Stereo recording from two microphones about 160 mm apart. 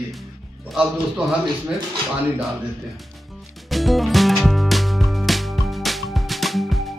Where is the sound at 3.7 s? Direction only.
Centre (ahead or behind).